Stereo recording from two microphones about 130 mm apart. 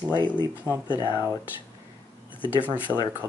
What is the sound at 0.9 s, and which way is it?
Speech, 30° left (ahead or behind).